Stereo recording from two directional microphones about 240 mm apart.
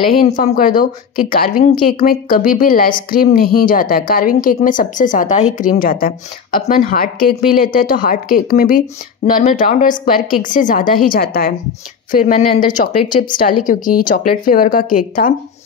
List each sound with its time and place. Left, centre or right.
0.2 s a woman's voice: left
14.0 s a woman's voice: left